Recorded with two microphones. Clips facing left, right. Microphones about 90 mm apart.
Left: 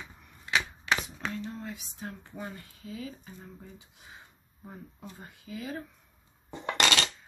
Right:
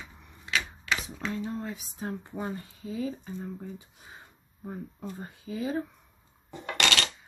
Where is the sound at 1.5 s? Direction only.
35° right (ahead or behind).